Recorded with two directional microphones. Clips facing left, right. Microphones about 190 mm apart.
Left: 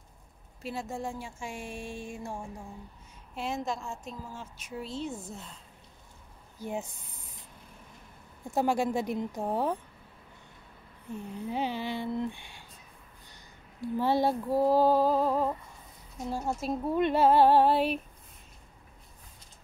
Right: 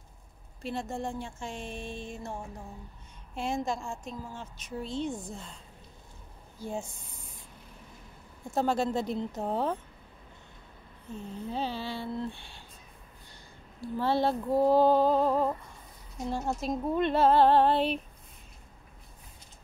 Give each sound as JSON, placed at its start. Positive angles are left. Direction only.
{"t": 0.6, "sound": "speech", "side_deg": 5}
{"t": 3.3, "sound": "a woman's voice", "side_deg": 5}
{"t": 6.6, "sound": "speech", "side_deg": 20}
{"t": 8.5, "sound": "speech", "side_deg": 15}
{"t": 11.1, "sound": "speech", "side_deg": 15}
{"t": 13.7, "sound": "speech", "side_deg": 15}
{"t": 14.5, "sound": "a woman's voice", "side_deg": 5}